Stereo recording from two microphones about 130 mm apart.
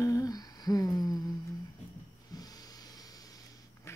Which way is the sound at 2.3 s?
30° left (ahead or behind).